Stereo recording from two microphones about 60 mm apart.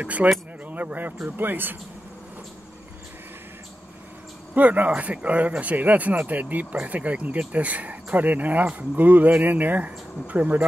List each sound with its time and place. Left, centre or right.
0.0 s speech: right
4.6 s speech: right